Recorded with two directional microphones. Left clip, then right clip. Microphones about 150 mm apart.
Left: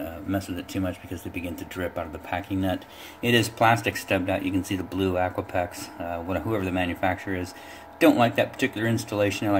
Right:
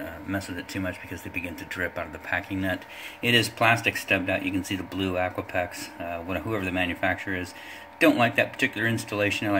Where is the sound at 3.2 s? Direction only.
10° right (ahead or behind).